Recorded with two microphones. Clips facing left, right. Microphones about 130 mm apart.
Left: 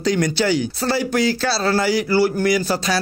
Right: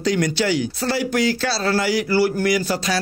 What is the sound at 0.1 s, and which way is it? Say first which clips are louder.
A man's voice: left 2 dB; 35° left (ahead or behind).